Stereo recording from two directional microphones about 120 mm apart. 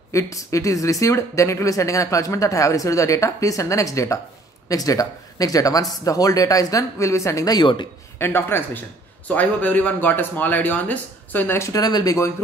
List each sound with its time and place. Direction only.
0.1 s speech: 25° left (ahead or behind)
8.2 s speech: 20° left (ahead or behind)